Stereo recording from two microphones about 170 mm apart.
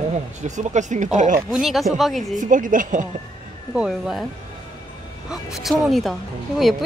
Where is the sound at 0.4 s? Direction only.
45° right (ahead or behind).